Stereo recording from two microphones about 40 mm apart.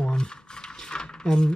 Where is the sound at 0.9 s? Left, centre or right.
Centre.